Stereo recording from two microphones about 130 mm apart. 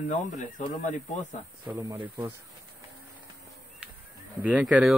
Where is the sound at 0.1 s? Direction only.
75° left (ahead or behind).